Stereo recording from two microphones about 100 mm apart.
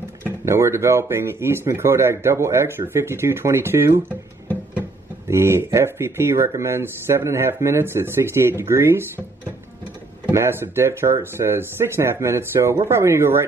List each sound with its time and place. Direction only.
0.2 s speech: 30° right (ahead or behind)
5.3 s speech: 25° right (ahead or behind)
10.3 s speech: 25° right (ahead or behind)